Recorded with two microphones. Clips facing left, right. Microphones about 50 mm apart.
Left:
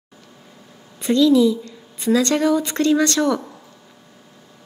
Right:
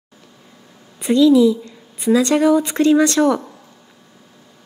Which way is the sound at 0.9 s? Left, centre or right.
Centre.